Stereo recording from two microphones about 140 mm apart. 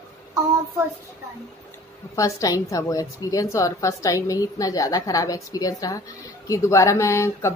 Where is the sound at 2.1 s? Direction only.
25° left (ahead or behind).